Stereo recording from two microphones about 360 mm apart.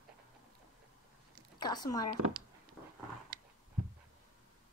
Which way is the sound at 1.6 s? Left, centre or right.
Centre.